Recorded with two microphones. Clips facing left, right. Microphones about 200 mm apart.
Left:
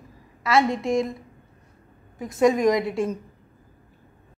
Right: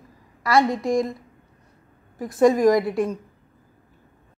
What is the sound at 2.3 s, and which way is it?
Speech, 20° left (ahead or behind).